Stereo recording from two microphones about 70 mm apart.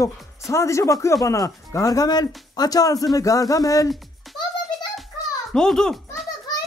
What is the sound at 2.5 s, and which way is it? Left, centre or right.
Speech, left.